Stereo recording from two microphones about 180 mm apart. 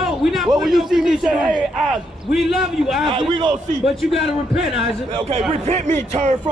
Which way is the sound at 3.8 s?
Centre (ahead or behind).